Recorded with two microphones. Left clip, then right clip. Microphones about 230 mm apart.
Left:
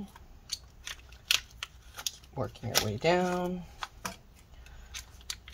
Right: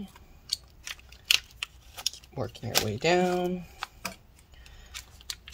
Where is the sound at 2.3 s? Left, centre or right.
Right.